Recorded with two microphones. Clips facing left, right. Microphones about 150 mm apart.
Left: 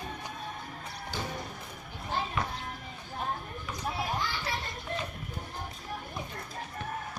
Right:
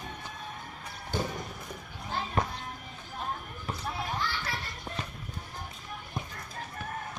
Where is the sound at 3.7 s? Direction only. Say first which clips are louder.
Left 2 dB; 15° left (ahead or behind).